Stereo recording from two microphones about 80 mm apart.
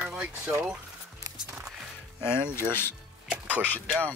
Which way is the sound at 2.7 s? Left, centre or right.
Left.